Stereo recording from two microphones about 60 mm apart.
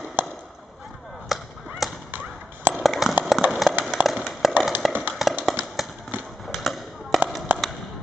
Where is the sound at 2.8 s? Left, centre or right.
Centre.